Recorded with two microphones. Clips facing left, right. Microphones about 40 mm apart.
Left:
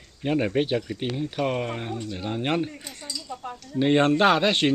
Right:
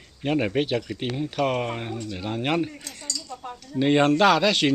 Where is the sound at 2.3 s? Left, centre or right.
Right.